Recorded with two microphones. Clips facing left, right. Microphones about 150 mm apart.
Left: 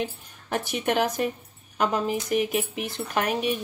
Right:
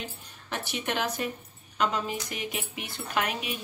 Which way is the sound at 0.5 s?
45° left (ahead or behind).